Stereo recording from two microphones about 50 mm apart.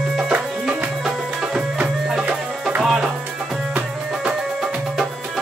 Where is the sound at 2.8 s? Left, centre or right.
Centre.